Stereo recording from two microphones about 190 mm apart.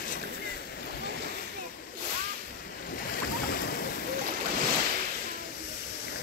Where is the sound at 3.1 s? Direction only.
55° left (ahead or behind).